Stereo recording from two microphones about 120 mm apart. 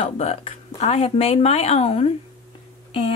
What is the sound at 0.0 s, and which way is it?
A woman's voice, 65° left (ahead or behind).